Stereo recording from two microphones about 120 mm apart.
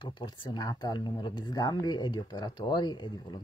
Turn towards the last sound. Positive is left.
turn(degrees=40)  # may be behind; listen again after turning